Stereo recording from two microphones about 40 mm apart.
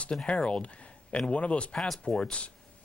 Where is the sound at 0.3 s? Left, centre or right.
Left.